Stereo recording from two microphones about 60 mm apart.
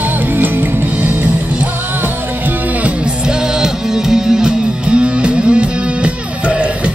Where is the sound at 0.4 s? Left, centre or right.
Right.